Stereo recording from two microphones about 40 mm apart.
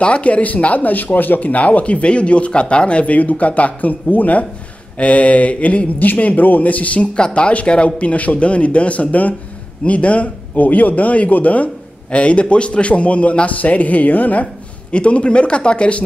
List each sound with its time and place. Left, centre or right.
0.0 s a man's voice: left
1.5 s a man's voice: left
7.2 s a man's voice: left